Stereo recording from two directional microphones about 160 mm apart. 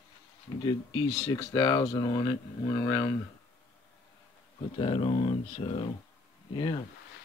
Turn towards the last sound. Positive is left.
turn(degrees=30)  # may be behind; listen again after turning